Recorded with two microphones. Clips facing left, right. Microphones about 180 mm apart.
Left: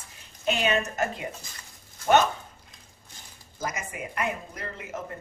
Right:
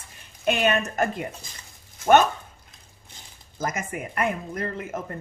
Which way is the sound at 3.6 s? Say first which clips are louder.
Right 4 dB; 50° right (ahead or behind).